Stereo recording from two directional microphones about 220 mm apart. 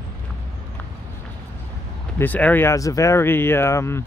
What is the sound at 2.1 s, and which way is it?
Speech, 10° left (ahead or behind).